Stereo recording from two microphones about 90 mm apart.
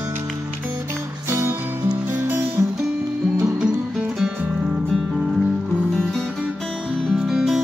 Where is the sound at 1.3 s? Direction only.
30° right (ahead or behind).